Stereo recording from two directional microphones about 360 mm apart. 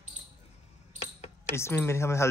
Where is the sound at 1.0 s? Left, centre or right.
Centre.